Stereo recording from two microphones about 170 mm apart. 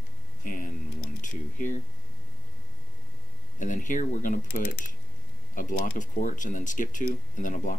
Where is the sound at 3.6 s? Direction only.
50° left (ahead or behind).